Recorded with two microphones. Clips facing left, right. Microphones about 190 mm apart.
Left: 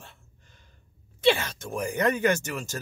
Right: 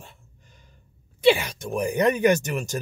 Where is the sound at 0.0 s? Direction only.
10° right (ahead or behind).